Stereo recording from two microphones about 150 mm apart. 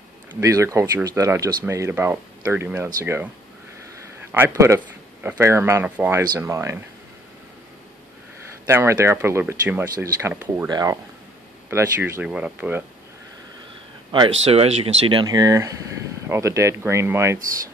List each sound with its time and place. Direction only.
0.3 s speech: 20° right (ahead or behind)
4.6 s speech: 15° right (ahead or behind)
8.6 s speech: 15° right (ahead or behind)
10.7 s speech: 25° right (ahead or behind)
11.7 s speech: 15° right (ahead or behind)
14.4 s speech: 45° right (ahead or behind); by 17.4 s 15° right (ahead or behind)